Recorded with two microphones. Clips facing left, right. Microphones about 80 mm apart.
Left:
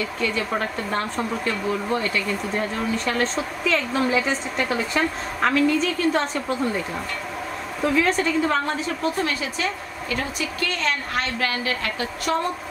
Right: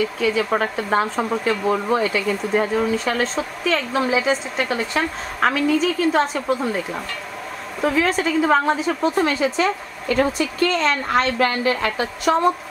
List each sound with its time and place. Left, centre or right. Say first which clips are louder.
0.2 s a woman's voice: right 4 dB; centre
7.8 s a woman's voice: right 1 dB; centre
9.2 s a woman's voice: right 6 dB; right